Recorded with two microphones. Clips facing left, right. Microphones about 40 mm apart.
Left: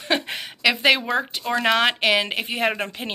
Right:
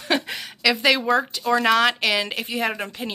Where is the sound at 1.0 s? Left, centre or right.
Centre.